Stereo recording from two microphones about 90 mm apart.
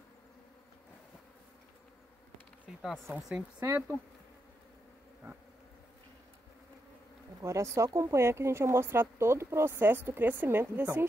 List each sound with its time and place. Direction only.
2.8 s speech: centre (ahead or behind)
7.4 s speech: 35° right (ahead or behind)